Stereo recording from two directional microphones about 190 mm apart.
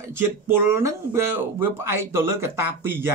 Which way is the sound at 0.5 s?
15° right (ahead or behind).